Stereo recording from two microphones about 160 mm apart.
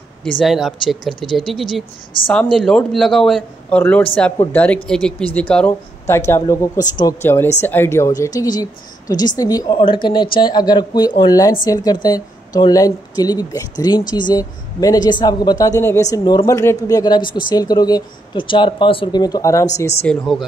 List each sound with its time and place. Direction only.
0.4 s a man's voice: centre (ahead or behind); by 19.7 s 20° left (ahead or behind)
20.0 s a man's voice: 5° left (ahead or behind)